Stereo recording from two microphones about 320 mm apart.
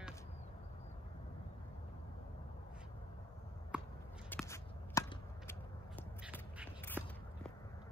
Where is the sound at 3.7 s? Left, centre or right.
Centre.